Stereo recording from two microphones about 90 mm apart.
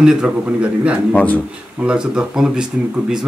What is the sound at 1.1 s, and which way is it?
Speech, 15° left (ahead or behind).